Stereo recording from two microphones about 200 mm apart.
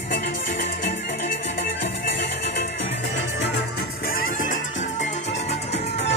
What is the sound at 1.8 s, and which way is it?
Music, 60° left (ahead or behind).